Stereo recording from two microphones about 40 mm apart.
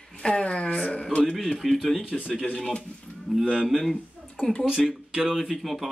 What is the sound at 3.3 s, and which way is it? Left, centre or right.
Speech, centre.